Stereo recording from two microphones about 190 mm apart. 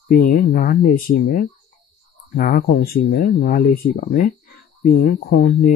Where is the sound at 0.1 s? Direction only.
45° left (ahead or behind).